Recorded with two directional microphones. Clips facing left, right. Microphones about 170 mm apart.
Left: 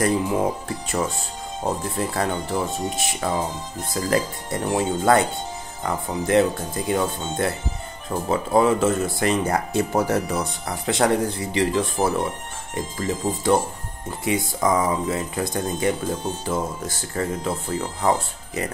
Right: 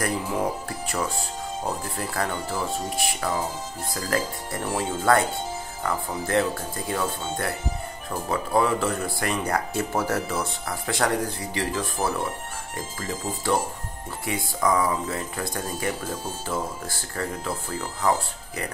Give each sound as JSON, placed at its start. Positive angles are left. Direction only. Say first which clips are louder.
{"t": 0.0, "sound": "speech", "louder": "left 5 dB", "side_deg": 25}